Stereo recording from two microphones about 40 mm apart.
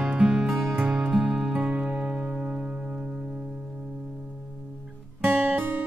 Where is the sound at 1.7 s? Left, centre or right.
Right.